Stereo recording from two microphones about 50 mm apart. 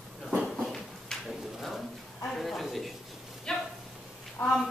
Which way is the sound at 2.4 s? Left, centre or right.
Centre.